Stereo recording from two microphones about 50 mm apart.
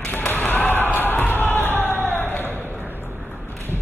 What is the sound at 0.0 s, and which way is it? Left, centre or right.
Basketball bounce, left.